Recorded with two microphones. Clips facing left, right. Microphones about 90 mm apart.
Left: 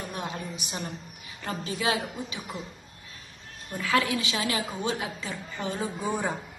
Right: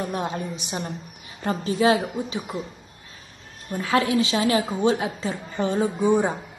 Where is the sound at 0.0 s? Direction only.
35° right (ahead or behind).